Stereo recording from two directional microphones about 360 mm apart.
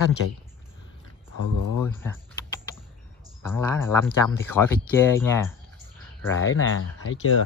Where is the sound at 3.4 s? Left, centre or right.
Centre.